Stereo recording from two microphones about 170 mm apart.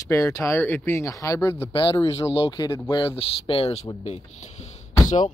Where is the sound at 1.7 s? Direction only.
30° left (ahead or behind).